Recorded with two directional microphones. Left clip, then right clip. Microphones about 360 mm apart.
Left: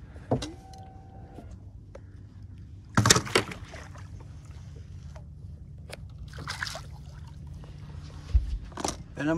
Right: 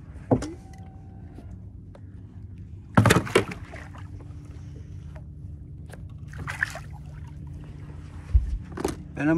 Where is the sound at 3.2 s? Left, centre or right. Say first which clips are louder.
Right 3 dB; centre.